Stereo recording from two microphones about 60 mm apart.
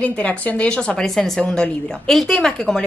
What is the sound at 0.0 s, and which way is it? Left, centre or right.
Speech, left.